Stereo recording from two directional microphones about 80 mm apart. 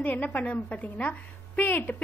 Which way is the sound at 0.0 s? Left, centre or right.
Left.